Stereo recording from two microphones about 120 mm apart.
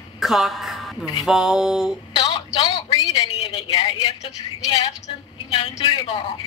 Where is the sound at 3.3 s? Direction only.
55° left (ahead or behind).